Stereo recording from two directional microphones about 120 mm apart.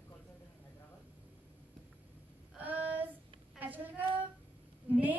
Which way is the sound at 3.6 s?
15° right (ahead or behind).